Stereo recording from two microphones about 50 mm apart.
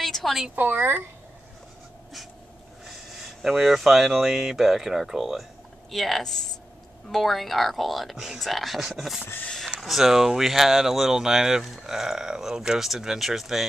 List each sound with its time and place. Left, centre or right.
0.0 s a sound: centre
0.6 s a woman's voice: right
2.8 s speech: centre